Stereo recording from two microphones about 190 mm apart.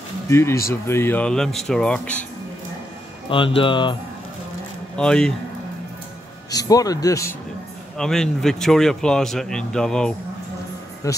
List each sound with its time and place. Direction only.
0.3 s a man's voice: 15° left (ahead or behind)
3.3 s speech: 25° left (ahead or behind)
4.9 s a man's voice: 5° left (ahead or behind)
6.5 s speech: 20° left (ahead or behind)
8.0 s a man's voice: 5° left (ahead or behind)
11.0 s speech: 15° left (ahead or behind)